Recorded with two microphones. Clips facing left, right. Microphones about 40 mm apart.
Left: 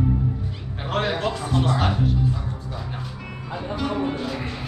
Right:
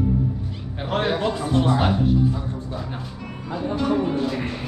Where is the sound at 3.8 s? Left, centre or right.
Centre.